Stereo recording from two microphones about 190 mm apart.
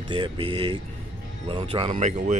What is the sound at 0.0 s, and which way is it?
Speech, 25° right (ahead or behind).